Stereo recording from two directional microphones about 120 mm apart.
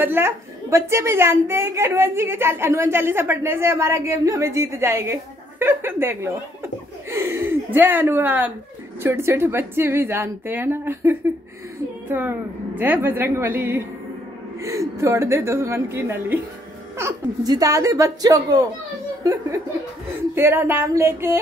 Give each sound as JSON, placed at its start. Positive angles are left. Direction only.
{"t": 0.0, "sound": "a woman's voice", "side_deg": -20}
{"t": 20.3, "sound": "a woman's voice", "side_deg": -20}